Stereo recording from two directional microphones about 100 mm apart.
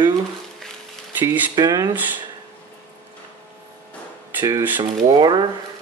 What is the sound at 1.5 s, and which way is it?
Speech, 40° right (ahead or behind).